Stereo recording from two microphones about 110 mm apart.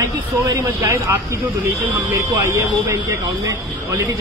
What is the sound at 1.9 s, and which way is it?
Speech, 30° right (ahead or behind).